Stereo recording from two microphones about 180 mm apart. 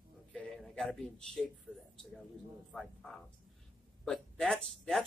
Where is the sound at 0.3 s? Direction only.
Centre (ahead or behind).